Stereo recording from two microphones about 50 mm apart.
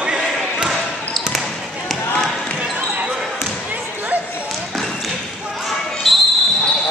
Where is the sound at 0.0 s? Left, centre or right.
Centre.